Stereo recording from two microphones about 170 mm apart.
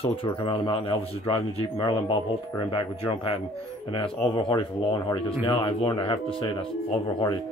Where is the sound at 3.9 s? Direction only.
30° left (ahead or behind).